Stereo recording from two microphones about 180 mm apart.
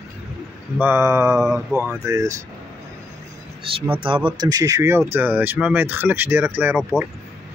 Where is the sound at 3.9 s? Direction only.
30° right (ahead or behind); by 6.8 s 10° right (ahead or behind).